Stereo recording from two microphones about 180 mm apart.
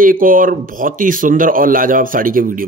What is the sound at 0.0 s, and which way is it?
Speech, 50° right (ahead or behind).